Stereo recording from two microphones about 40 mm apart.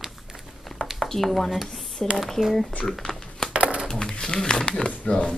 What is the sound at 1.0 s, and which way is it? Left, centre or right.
Speech, centre.